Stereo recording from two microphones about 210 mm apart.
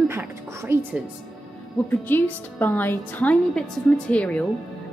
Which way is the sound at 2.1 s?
10° left (ahead or behind).